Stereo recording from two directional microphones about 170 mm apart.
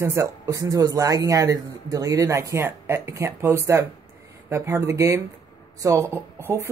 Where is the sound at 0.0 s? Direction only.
15° right (ahead or behind).